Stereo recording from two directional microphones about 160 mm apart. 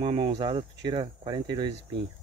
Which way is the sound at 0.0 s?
30° right (ahead or behind).